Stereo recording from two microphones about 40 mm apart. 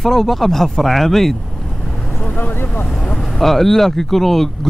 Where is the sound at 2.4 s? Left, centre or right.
Left.